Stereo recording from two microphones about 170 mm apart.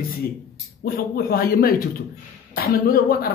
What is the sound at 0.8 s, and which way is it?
Speech, 60° left (ahead or behind).